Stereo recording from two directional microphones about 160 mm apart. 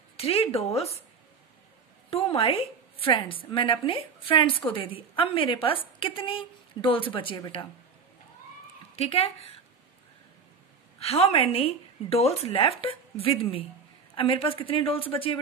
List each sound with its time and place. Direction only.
0.2 s a woman's voice: 40° left (ahead or behind)
2.0 s a woman's voice: 35° left (ahead or behind)
8.9 s a woman's voice: 40° left (ahead or behind)
11.0 s a woman's voice: 40° left (ahead or behind)